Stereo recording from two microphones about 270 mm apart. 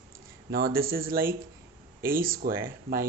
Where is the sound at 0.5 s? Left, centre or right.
Right.